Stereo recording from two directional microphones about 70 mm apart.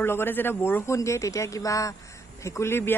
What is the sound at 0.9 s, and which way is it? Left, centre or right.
Speech, left.